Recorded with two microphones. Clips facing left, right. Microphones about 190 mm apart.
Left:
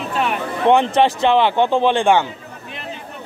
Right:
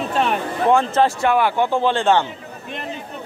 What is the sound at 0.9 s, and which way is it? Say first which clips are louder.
Speech: left 2 dB; 20° left (ahead or behind).